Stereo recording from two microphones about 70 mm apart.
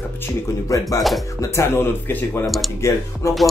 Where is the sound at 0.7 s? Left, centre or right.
Left.